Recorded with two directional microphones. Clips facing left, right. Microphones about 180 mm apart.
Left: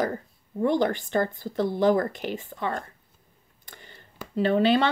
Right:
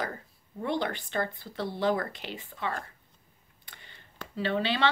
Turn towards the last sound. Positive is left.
turn(degrees=45)  # may be behind; listen again after turning